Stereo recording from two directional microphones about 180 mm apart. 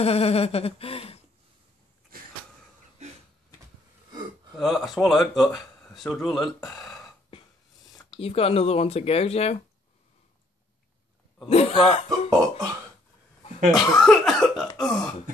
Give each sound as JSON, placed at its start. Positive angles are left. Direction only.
{"t": 0.0, "sound": "speech", "side_deg": 35}
{"t": 3.0, "sound": "a sound", "side_deg": -40}
{"t": 4.6, "sound": "speech", "side_deg": 0}
{"t": 8.2, "sound": "speech", "side_deg": 35}
{"t": 11.4, "sound": "speech", "side_deg": 35}
{"t": 13.7, "sound": "speech", "side_deg": 0}